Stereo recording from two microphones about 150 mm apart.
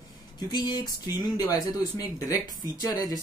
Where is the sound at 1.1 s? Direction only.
25° left (ahead or behind).